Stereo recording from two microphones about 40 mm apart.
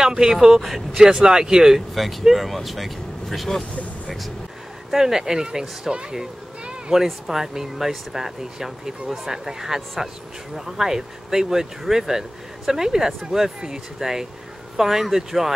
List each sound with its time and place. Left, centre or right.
0.0 s speech: centre
1.0 s speech: centre
2.3 s speech: centre
4.9 s a child's voice: centre